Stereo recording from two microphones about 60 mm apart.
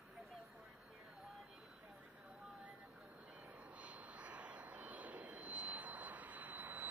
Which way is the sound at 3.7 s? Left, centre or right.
Right.